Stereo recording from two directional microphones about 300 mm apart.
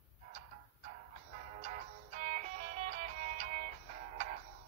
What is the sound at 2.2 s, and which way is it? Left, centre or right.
Music, right.